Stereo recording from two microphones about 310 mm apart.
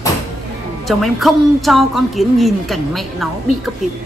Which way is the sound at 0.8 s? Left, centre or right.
Centre.